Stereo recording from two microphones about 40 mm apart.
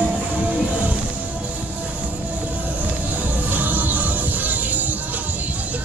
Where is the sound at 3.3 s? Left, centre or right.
Right.